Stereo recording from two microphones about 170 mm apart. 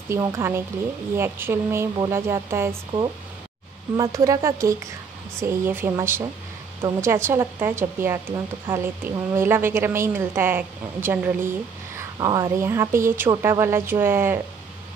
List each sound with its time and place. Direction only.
0.1 s a woman's voice: 15° right (ahead or behind)
3.9 s a woman's voice: 20° right (ahead or behind)